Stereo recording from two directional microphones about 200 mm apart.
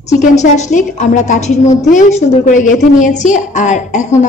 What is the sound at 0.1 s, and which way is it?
A woman's voice, 35° left (ahead or behind).